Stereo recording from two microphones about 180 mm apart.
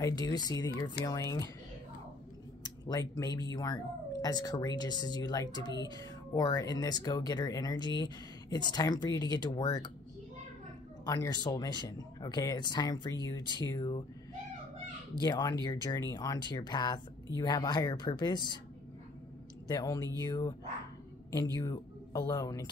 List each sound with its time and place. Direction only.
0.0 s speech: 20° left (ahead or behind)
2.6 s speech: 20° left (ahead or behind)
11.1 s speech: 20° left (ahead or behind)
15.1 s speech: 20° left (ahead or behind)
19.7 s speech: 20° left (ahead or behind)
21.5 s speech: 20° left (ahead or behind)